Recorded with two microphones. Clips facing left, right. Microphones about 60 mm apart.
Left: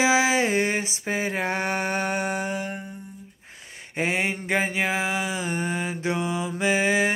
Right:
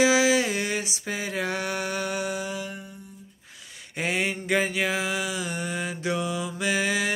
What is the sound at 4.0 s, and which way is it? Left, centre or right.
Mantra, left.